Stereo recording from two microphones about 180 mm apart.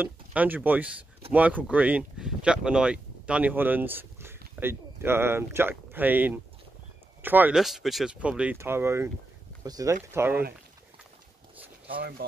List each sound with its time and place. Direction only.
0.0 s speech: 10° right (ahead or behind)
12.0 s speech: 65° right (ahead or behind)